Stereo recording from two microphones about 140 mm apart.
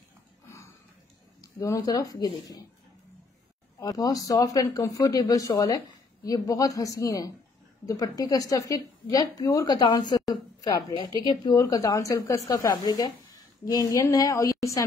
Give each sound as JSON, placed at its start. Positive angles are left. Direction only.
{"t": 1.4, "sound": "a woman's voice", "side_deg": 25}
{"t": 3.8, "sound": "a woman's voice", "side_deg": 25}